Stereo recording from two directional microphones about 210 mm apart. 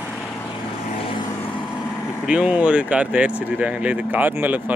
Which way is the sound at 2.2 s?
5° right (ahead or behind).